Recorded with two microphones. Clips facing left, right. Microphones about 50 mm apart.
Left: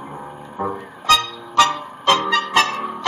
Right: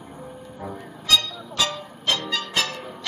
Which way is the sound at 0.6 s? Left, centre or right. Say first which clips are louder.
Left 11 dB; left.